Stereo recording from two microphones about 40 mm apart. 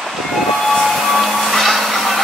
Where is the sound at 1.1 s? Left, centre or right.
Centre.